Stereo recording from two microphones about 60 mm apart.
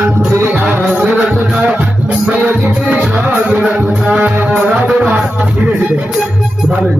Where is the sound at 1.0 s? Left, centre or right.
Centre.